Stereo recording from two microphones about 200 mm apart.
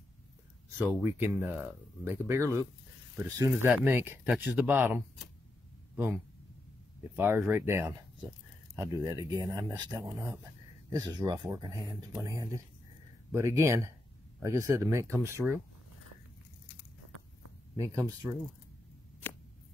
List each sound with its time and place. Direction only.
0.7 s speech: 10° right (ahead or behind)
17.7 s speech: 15° right (ahead or behind)